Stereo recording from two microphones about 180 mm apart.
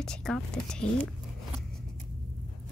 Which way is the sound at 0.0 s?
5° left (ahead or behind).